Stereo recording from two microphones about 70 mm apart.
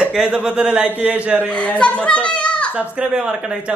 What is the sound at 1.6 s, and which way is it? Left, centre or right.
A child's voice, centre.